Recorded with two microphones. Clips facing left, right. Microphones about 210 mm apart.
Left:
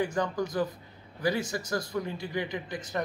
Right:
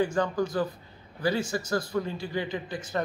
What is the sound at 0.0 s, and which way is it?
A man's voice, 20° left (ahead or behind).